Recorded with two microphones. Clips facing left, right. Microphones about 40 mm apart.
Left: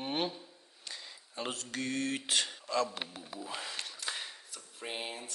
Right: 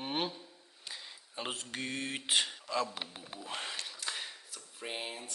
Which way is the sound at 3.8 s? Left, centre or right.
Centre.